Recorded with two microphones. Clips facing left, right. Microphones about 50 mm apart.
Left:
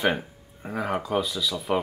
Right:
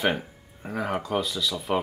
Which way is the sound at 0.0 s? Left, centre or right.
Centre.